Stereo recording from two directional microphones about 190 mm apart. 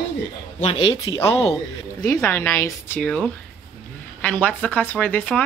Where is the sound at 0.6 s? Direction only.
30° left (ahead or behind).